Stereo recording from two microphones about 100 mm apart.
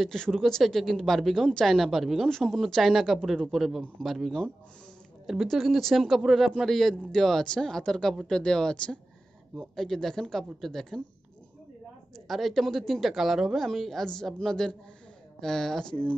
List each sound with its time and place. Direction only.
0.0 s speech: 5° left (ahead or behind)
12.3 s speech: centre (ahead or behind)